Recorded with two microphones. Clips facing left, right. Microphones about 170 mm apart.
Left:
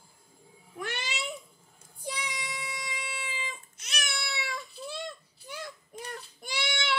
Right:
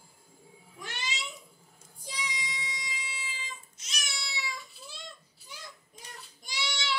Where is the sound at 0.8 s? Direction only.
60° left (ahead or behind).